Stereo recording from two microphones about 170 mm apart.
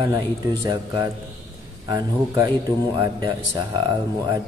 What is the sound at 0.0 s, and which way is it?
Speech, 20° right (ahead or behind).